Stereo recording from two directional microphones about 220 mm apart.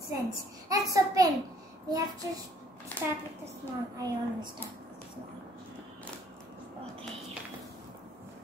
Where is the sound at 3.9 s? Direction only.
15° right (ahead or behind).